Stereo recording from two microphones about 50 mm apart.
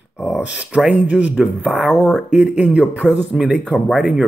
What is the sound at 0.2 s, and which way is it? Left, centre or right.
Speech, centre.